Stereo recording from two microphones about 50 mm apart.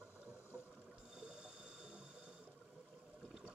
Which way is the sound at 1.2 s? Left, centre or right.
Centre.